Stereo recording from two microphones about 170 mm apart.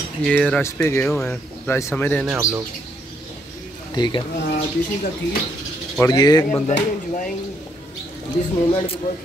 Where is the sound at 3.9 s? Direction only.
25° left (ahead or behind).